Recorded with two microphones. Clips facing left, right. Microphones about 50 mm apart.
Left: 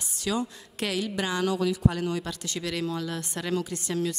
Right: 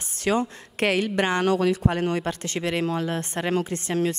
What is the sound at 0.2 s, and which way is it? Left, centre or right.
Speech, right.